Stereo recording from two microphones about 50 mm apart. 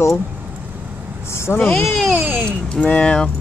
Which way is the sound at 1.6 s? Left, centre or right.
Centre.